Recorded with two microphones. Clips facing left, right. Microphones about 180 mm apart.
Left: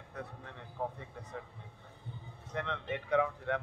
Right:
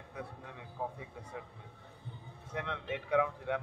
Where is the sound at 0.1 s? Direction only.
10° right (ahead or behind).